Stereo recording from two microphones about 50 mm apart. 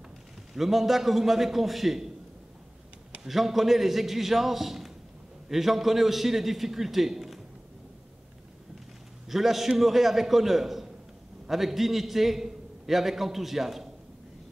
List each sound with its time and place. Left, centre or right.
0.6 s a man's voice: centre
3.3 s a man's voice: centre
9.3 s a man's voice: centre